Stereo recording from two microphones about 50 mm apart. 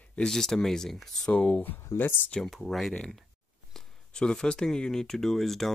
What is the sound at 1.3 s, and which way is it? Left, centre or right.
Speech, left.